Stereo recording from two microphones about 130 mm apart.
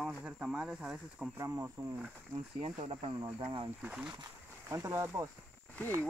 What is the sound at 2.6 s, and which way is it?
Speech, 45° right (ahead or behind).